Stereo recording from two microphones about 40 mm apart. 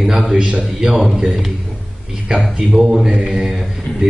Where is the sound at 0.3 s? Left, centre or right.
Right.